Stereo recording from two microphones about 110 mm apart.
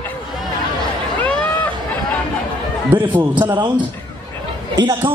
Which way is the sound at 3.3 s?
15° right (ahead or behind).